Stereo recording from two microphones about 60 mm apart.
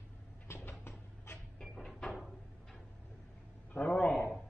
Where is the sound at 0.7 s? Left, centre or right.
Left.